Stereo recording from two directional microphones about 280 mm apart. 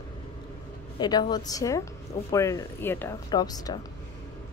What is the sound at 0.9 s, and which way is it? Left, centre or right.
A woman's voice, centre.